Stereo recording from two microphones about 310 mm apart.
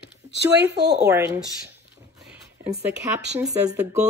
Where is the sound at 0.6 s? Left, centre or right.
Right.